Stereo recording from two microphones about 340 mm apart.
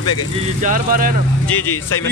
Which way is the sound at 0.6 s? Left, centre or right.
Right.